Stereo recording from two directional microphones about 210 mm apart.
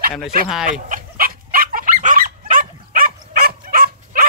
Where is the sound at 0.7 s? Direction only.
40° right (ahead or behind).